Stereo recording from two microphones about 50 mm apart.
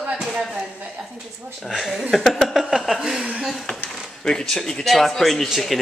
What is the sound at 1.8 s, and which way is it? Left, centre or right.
Speech, centre.